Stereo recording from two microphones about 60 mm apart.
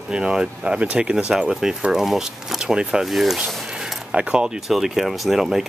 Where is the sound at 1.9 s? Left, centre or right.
Centre.